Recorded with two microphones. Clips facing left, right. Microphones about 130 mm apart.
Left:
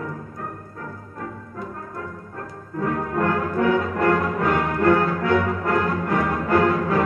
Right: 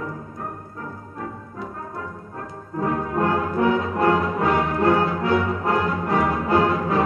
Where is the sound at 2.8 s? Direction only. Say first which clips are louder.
Right 1 dB; 25° right (ahead or behind).